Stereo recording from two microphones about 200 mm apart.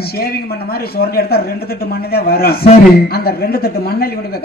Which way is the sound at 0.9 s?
50° left (ahead or behind).